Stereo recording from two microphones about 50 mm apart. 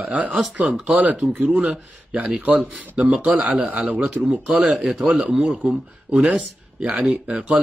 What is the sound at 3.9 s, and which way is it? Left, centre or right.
Speech, right.